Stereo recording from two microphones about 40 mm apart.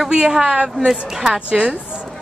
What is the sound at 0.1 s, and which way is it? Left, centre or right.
Speech, centre.